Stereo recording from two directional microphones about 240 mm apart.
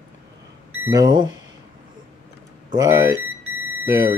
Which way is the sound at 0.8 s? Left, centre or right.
Centre.